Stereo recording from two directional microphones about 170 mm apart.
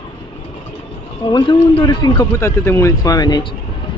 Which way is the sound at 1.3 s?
25° left (ahead or behind).